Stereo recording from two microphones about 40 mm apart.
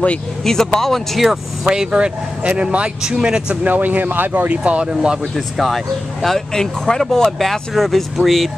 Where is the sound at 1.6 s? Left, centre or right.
Right.